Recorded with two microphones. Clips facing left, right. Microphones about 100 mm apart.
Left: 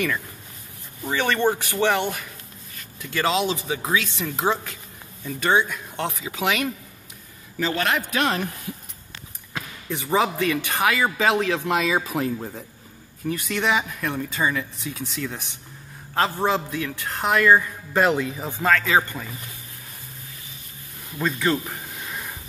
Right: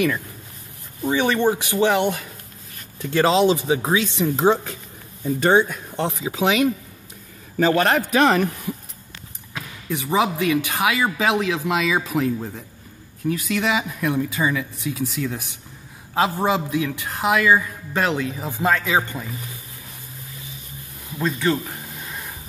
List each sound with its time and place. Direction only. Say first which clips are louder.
1.0 s speech: right 3 dB; 10° right (ahead or behind)
3.0 s speech: right 6 dB; 35° right (ahead or behind)
5.9 s speech: right 5 dB; 30° right (ahead or behind)
7.5 s a man's voice: right 6 dB; 50° right (ahead or behind)
9.8 s speech: right 1 dB; 5° right (ahead or behind)
18.6 s speech: even; 15° right (ahead or behind)
21.2 s speech: right 1 dB; centre (ahead or behind)